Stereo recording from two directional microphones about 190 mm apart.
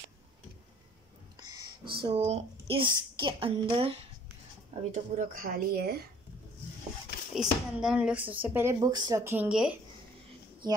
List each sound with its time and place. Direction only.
2.0 s a woman's voice: 35° right (ahead or behind)
5.1 s speech: 45° right (ahead or behind)
7.3 s speech: 5° right (ahead or behind)
10.6 s speech: 20° right (ahead or behind)